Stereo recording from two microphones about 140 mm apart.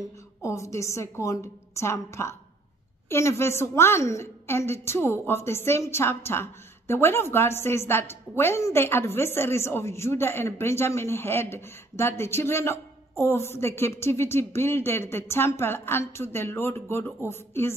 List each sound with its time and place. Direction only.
0.4 s a woman's voice: 20° left (ahead or behind)